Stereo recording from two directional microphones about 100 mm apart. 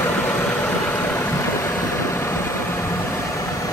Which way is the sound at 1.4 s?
30° left (ahead or behind).